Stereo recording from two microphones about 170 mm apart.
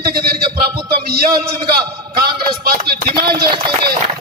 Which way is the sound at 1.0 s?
65° right (ahead or behind).